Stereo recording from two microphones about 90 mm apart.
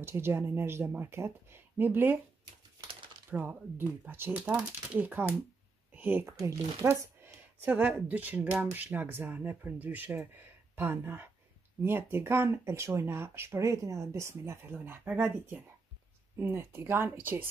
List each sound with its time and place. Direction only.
0.0 s speech: 30° right (ahead or behind)
3.3 s speech: 25° right (ahead or behind)
6.4 s speech: 35° right (ahead or behind)
7.6 s speech: 20° right (ahead or behind)